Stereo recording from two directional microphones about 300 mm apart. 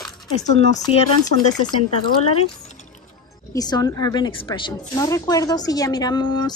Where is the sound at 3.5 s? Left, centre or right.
Centre.